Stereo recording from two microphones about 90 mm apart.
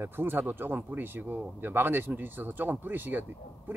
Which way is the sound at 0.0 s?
25° right (ahead or behind).